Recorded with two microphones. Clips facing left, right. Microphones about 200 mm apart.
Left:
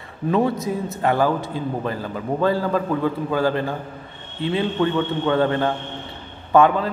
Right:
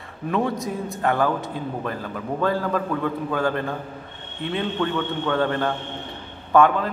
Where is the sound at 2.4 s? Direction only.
5° left (ahead or behind).